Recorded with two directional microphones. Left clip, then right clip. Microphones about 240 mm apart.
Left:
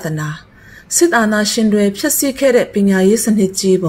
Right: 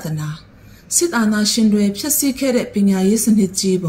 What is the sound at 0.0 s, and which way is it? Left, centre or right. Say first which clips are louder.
Speech: left 6 dB; left.